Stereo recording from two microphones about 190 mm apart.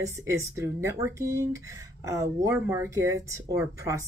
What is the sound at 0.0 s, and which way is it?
A woman's voice, 15° right (ahead or behind).